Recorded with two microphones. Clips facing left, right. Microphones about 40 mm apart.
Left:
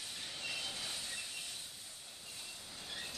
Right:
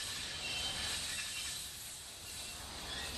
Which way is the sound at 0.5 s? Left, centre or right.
Right.